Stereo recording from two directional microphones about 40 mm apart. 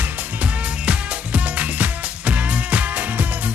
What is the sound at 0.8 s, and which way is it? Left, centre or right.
Music, right.